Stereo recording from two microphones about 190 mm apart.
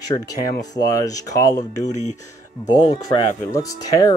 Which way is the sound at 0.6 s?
20° left (ahead or behind).